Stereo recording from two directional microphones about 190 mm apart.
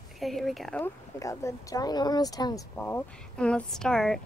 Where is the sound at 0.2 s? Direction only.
Centre (ahead or behind).